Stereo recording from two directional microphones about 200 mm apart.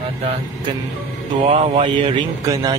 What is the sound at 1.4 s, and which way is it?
A man's voice, 35° right (ahead or behind).